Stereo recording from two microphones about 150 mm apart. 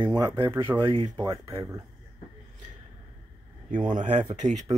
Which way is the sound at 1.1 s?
25° right (ahead or behind).